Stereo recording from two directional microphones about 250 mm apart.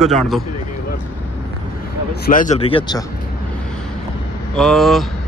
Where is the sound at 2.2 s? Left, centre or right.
Left.